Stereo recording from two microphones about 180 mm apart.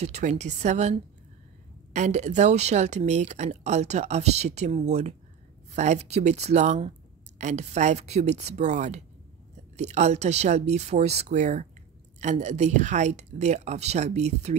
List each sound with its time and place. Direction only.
0.0 s speech: 40° right (ahead or behind)
2.0 s speech: 40° right (ahead or behind)